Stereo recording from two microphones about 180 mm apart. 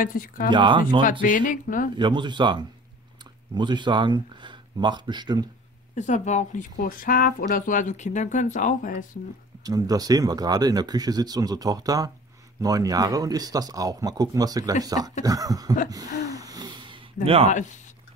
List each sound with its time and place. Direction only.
0.0 s speech: 50° left (ahead or behind)
0.5 s speech: 25° right (ahead or behind)
1.2 s speech: 50° left (ahead or behind)
2.0 s speech: 25° right (ahead or behind)
5.9 s speech: 40° left (ahead or behind)
9.6 s speech: 20° right (ahead or behind)
15.9 s a sound: 20° right (ahead or behind)
17.5 s speech: 40° left (ahead or behind)